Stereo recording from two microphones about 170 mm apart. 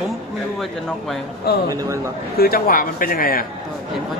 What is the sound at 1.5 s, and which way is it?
Speech, 70° left (ahead or behind).